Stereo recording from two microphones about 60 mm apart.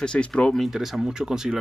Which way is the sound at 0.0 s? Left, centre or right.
Centre.